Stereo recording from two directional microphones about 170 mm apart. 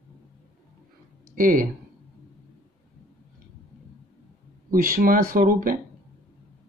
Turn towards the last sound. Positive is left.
turn(degrees=-55)  # may be behind; listen again after turning